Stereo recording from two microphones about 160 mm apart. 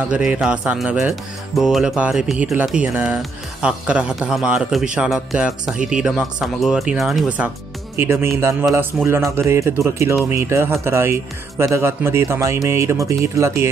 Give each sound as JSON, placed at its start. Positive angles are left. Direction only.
{"t": 0.0, "sound": "speech", "side_deg": -5}